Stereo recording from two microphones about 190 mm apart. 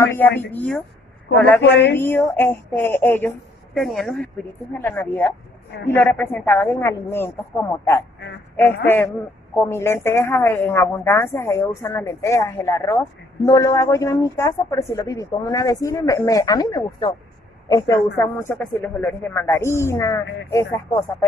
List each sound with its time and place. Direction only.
0.0 s a woman's voice: 10° left (ahead or behind)
1.7 s a woman's voice: 65° left (ahead or behind)
2.0 s a woman's voice: 10° left (ahead or behind)
8.8 s a woman's voice: 10° left (ahead or behind)